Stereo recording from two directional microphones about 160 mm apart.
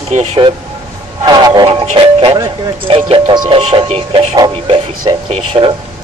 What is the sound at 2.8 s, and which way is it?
Speech, 35° right (ahead or behind).